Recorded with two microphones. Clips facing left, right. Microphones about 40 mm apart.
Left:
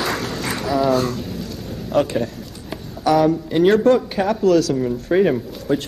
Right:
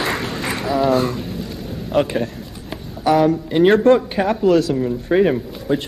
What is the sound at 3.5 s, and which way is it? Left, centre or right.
A man's voice, centre.